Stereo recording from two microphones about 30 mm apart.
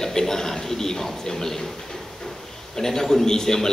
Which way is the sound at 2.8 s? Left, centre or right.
Centre.